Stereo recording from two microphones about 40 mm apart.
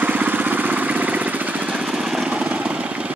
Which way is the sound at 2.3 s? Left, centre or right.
Right.